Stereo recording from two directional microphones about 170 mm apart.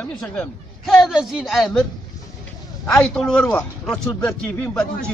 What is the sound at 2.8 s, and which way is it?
A man's voice, 5° left (ahead or behind).